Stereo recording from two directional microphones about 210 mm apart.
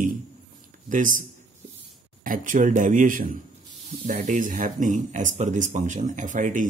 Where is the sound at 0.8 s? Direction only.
40° right (ahead or behind).